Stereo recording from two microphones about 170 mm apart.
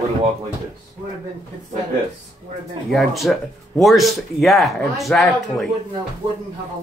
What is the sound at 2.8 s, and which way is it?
Speech, centre (ahead or behind).